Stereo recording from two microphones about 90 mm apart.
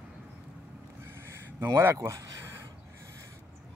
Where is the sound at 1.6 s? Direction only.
30° right (ahead or behind).